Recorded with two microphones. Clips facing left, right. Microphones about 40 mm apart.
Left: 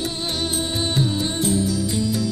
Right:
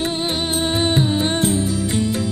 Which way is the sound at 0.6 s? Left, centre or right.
Right.